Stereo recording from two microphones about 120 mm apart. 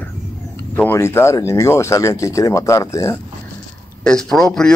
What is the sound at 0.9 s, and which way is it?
Speech, 20° left (ahead or behind).